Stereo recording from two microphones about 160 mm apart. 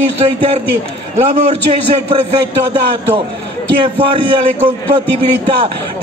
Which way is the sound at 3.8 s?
30° right (ahead or behind).